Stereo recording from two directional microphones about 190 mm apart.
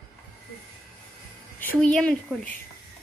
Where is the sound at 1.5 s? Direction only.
10° left (ahead or behind).